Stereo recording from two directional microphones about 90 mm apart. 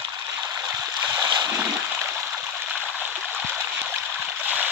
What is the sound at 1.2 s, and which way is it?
Splash, 55° right (ahead or behind).